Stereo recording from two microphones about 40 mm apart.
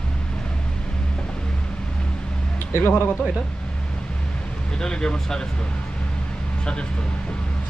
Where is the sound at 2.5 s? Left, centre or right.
Left.